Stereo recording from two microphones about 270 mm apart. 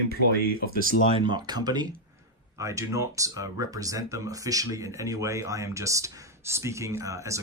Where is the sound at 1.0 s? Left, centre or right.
Centre.